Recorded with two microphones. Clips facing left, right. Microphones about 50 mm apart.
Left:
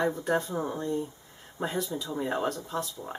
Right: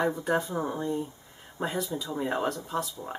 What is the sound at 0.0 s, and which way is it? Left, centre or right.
Speech, centre.